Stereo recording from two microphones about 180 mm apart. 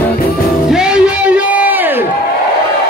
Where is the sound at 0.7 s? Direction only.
5° right (ahead or behind).